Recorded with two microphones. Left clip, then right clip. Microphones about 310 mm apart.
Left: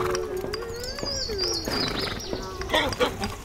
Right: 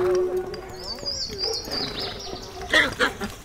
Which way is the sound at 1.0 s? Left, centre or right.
Left.